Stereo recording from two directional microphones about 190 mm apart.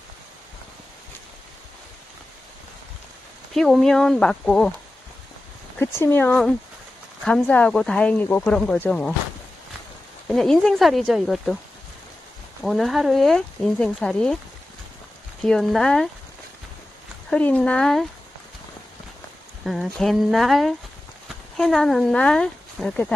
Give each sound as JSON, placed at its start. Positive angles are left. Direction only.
{"t": 3.5, "sound": "speech", "side_deg": 0}
{"t": 5.8, "sound": "speech", "side_deg": 10}
{"t": 10.2, "sound": "speech", "side_deg": 0}
{"t": 12.6, "sound": "speech", "side_deg": 0}
{"t": 15.4, "sound": "speech", "side_deg": 5}
{"t": 17.3, "sound": "speech", "side_deg": 5}
{"t": 19.6, "sound": "speech", "side_deg": 0}